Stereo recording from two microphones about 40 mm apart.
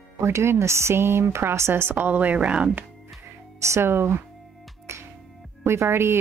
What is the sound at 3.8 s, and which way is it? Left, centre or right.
Speech, right.